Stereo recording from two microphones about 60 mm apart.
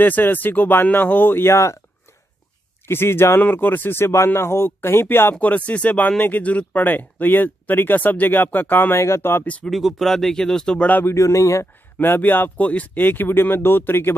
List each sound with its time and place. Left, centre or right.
0.0 s speech: left
2.9 s speech: left
3.3 s speech: left
5.3 s speech: left
8.9 s speech: left
9.7 s speech: centre
11.1 s speech: left
12.0 s speech: left